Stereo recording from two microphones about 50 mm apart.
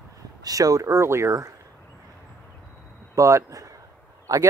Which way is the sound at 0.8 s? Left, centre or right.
Right.